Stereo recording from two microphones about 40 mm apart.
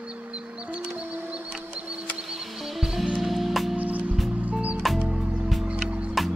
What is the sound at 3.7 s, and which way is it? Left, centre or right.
Music, right.